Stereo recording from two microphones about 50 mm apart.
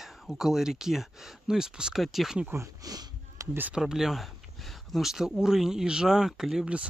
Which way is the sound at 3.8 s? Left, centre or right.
Centre.